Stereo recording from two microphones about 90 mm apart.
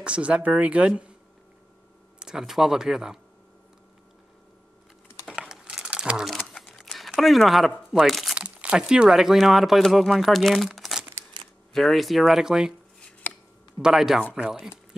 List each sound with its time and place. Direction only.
0.0 s speech: 10° right (ahead or behind)
2.1 s speech: 5° right (ahead or behind)
5.3 s typing: 10° right (ahead or behind)
7.9 s speech: centre (ahead or behind)
8.4 s speech: 15° right (ahead or behind)
13.2 s a sound: 20° left (ahead or behind)
13.7 s speech: 5° right (ahead or behind)